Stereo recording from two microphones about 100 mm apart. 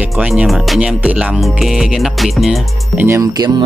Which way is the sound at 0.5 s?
Centre (ahead or behind).